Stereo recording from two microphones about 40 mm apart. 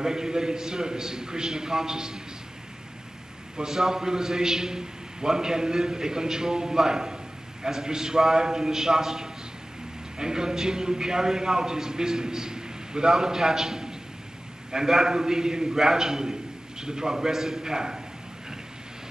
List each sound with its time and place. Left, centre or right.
0.0 s a man's voice: centre
3.5 s a man's voice: centre